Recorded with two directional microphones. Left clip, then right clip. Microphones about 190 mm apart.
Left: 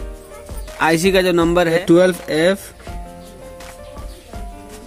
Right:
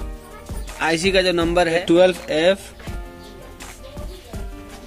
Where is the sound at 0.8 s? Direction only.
40° left (ahead or behind).